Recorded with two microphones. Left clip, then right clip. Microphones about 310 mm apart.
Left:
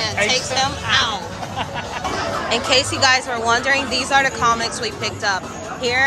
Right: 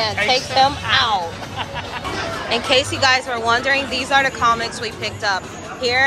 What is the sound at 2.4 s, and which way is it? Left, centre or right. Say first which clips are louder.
A woman's voice: right 1 dB; centre.